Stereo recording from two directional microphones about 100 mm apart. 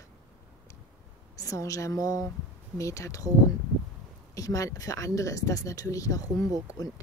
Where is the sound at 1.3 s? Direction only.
35° left (ahead or behind).